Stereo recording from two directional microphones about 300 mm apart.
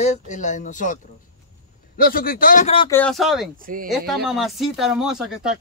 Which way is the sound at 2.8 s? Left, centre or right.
Centre.